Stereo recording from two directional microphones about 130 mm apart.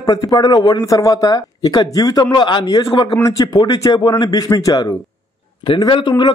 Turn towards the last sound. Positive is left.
turn(degrees=35)  # may be behind; listen again after turning